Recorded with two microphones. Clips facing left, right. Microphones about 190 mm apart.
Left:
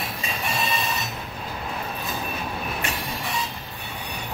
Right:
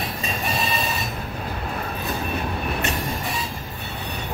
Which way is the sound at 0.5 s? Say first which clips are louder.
Right 1 dB; centre (ahead or behind).